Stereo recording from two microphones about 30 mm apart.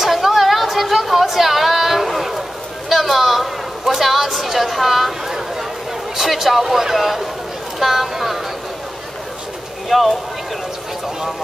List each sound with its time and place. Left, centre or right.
0.0 s a sound: centre
6.1 s a man's voice: centre
9.8 s speech: centre